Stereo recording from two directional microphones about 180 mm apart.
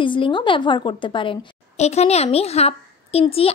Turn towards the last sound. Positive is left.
turn(degrees=35)  # may be behind; listen again after turning